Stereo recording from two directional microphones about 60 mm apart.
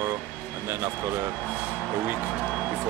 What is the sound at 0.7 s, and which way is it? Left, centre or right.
Speech, right.